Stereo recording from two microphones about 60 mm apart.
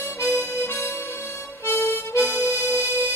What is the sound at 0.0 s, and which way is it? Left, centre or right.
Music, left.